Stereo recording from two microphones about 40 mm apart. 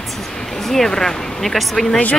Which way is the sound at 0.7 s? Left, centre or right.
Centre.